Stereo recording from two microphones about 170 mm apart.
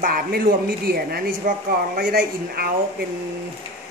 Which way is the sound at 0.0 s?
55° right (ahead or behind).